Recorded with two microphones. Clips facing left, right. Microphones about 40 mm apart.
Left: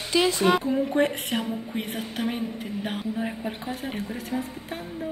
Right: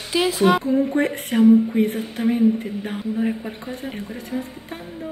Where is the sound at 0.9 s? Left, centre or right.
Centre.